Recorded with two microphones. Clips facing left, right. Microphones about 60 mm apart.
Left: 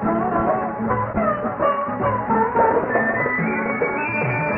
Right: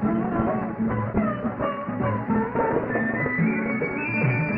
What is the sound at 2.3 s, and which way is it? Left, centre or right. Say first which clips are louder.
Music: left 7 dB; centre.